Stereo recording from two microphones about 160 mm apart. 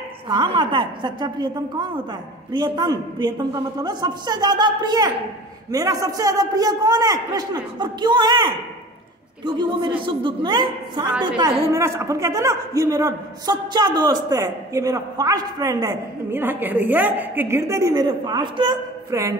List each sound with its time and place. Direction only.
0.3 s a man's voice: 30° right (ahead or behind)
11.7 s a man's voice: 15° right (ahead or behind)